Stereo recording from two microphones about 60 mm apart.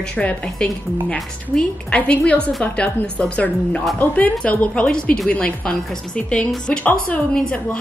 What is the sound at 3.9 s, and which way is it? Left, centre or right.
Speech, left.